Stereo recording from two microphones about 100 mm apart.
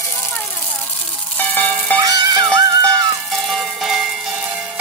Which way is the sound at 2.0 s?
40° right (ahead or behind).